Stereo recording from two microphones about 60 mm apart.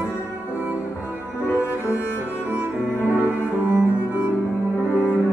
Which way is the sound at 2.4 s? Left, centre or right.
Right.